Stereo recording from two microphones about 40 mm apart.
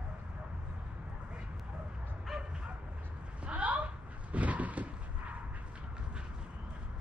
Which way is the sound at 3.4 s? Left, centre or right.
Right.